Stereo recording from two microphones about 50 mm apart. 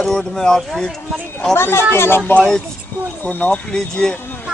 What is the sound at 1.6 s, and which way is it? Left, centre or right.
Speech, left.